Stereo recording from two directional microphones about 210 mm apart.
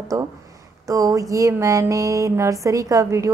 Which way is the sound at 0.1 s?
15° right (ahead or behind).